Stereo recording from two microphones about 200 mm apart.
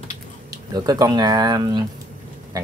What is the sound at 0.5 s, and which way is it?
Speech, 20° right (ahead or behind).